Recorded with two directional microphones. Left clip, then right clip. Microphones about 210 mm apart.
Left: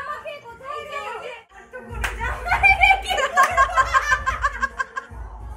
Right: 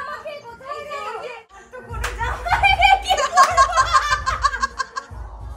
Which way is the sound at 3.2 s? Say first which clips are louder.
Right 3 dB; 20° right (ahead or behind).